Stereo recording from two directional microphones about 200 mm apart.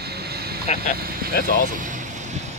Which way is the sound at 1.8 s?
40° right (ahead or behind).